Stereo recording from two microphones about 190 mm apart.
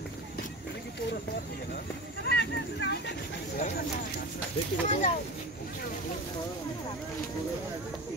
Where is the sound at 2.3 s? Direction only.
65° left (ahead or behind).